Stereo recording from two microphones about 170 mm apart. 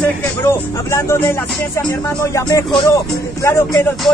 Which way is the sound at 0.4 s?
15° left (ahead or behind).